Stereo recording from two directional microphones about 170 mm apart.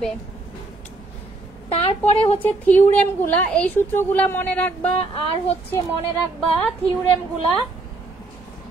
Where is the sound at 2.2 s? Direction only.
35° left (ahead or behind).